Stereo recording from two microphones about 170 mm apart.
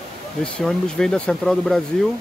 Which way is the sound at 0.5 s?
5° left (ahead or behind).